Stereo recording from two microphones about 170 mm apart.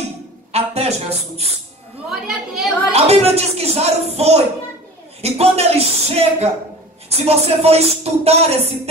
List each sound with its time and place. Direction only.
0.5 s a sound: 40° right (ahead or behind)
2.0 s a woman's voice: centre (ahead or behind)
2.9 s speech: 40° right (ahead or behind)